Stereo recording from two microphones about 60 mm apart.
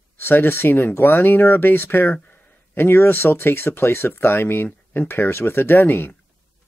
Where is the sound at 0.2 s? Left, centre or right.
Left.